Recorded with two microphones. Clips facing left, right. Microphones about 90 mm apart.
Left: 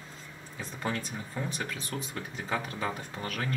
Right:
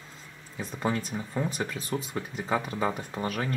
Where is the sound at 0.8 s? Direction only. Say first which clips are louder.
Right 5 dB; 20° right (ahead or behind).